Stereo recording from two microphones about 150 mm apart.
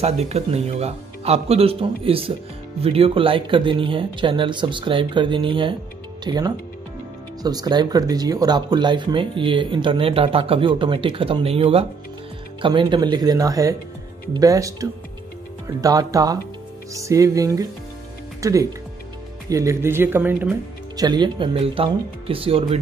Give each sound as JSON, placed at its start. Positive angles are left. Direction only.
{"t": 0.0, "sound": "speech", "side_deg": -45}
{"t": 20.9, "sound": "speech", "side_deg": -25}